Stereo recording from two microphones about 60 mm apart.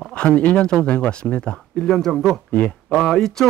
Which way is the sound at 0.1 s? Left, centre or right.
Centre.